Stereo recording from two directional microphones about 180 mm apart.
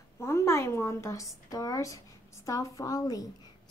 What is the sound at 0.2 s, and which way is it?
A woman's voice, 15° left (ahead or behind).